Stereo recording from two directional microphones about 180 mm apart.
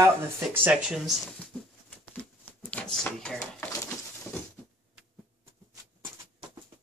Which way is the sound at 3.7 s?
15° left (ahead or behind).